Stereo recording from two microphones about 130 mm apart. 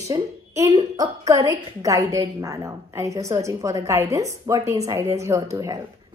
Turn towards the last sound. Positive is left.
turn(degrees=-25)  # may be behind; listen again after turning